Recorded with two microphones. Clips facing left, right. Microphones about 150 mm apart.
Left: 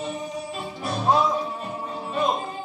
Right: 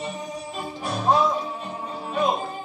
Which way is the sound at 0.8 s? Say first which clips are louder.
Even; centre (ahead or behind).